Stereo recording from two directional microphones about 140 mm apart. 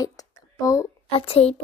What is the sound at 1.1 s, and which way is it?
Speech, 45° left (ahead or behind).